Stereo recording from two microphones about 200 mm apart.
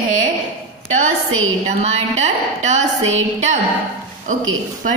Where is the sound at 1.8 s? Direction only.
35° right (ahead or behind).